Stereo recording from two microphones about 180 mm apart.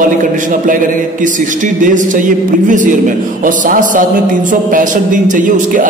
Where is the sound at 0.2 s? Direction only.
45° right (ahead or behind).